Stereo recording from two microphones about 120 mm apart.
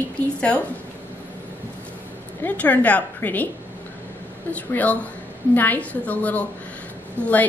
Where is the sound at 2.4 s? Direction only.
15° left (ahead or behind).